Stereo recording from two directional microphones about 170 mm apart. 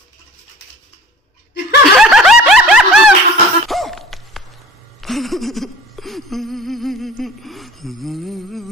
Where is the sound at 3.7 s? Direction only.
Centre (ahead or behind).